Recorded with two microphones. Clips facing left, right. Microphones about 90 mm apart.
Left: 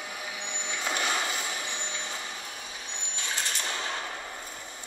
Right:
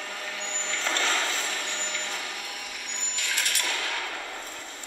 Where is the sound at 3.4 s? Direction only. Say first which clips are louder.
Right 2 dB; 65° right (ahead or behind).